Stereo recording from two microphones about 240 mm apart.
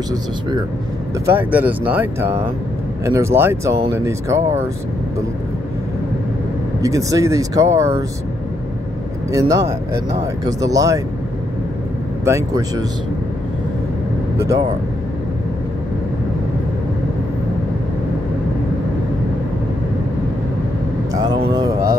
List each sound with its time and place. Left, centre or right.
1.2 s speech: centre
6.8 s speech: centre
9.3 s speech: centre
12.3 s speech: centre
21.5 s speech: centre